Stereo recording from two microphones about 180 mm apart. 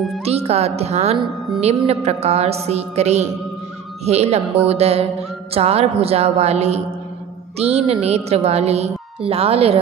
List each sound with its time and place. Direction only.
0.2 s speech: 35° right (ahead or behind)